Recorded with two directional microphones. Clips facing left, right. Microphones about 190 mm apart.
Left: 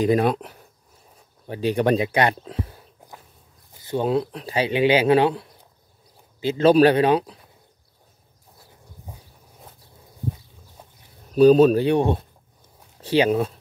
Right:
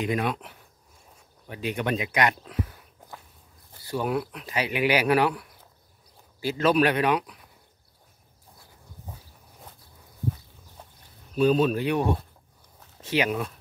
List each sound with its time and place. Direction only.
0.0 s speech: 35° left (ahead or behind)
3.8 s speech: 25° left (ahead or behind)
9.1 s a sound: 10° left (ahead or behind)
11.3 s speech: 40° left (ahead or behind)